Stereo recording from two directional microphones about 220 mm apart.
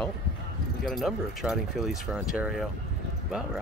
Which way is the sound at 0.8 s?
Centre (ahead or behind).